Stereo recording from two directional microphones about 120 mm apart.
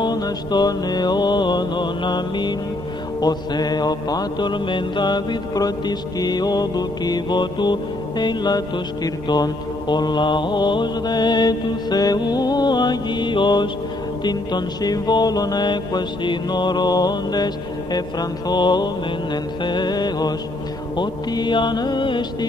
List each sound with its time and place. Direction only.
0.0 s music: 35° left (ahead or behind)
18.5 s music: 35° left (ahead or behind)